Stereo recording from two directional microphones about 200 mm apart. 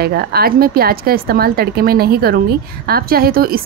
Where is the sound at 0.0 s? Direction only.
50° right (ahead or behind).